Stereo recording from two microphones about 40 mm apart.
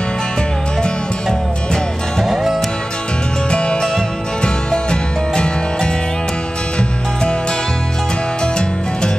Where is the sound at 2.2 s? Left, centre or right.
Centre.